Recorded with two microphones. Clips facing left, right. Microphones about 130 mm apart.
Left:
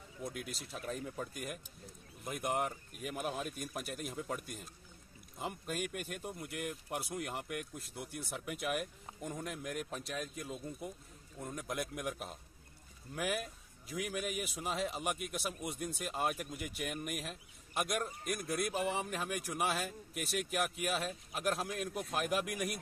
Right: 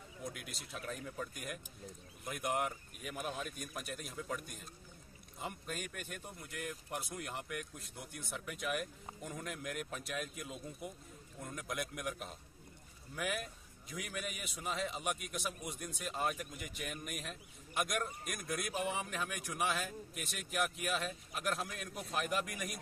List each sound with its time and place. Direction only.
0.2 s speech: centre (ahead or behind)
0.7 s speech: 35° left (ahead or behind)
1.3 s a man's voice: centre (ahead or behind)
20.2 s speech: 5° left (ahead or behind)